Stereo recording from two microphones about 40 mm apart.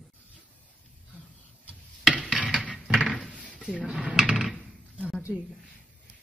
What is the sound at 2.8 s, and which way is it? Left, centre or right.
Cupboard open or close, centre.